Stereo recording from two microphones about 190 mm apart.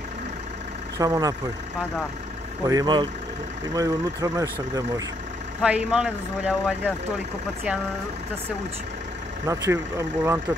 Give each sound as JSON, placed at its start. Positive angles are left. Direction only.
{"t": 0.9, "sound": "speech", "side_deg": -20}
{"t": 2.6, "sound": "speech", "side_deg": -20}
{"t": 5.6, "sound": "speech", "side_deg": -5}
{"t": 9.5, "sound": "speech", "side_deg": -15}